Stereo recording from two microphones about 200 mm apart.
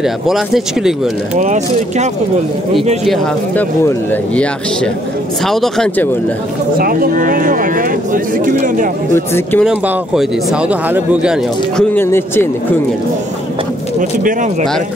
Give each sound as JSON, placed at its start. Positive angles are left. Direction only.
{"t": 1.3, "sound": "speech", "side_deg": -35}
{"t": 3.1, "sound": "speech", "side_deg": 10}
{"t": 6.8, "sound": "speech", "side_deg": -45}
{"t": 9.1, "sound": "speech", "side_deg": 10}
{"t": 9.7, "sound": "speech", "side_deg": -5}
{"t": 11.7, "sound": "speech", "side_deg": 10}